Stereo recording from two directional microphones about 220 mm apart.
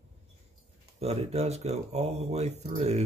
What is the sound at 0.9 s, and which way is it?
Speech, 30° right (ahead or behind).